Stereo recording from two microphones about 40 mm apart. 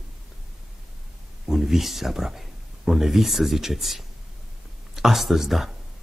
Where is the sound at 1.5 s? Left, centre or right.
Centre.